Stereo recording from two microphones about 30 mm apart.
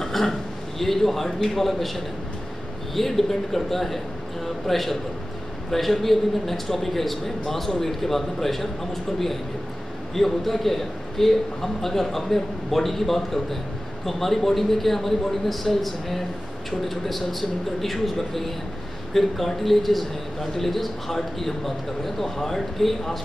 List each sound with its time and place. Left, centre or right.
0.0 s a man's voice: centre
2.9 s a man's voice: centre
10.1 s a man's voice: centre